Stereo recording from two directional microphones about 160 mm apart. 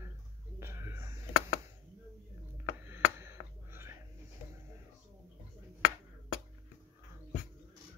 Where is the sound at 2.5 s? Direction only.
15° right (ahead or behind).